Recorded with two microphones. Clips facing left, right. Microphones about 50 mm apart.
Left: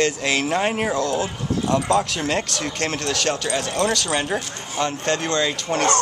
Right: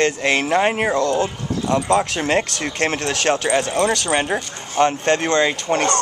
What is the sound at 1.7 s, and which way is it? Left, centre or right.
Speech, centre.